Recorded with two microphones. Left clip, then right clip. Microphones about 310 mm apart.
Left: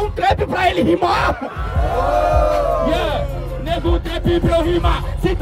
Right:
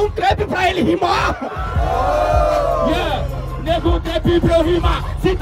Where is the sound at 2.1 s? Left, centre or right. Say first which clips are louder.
Left 1 dB; right.